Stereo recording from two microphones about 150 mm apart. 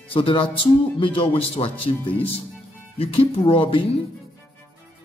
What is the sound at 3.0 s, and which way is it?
A man's voice, 40° left (ahead or behind).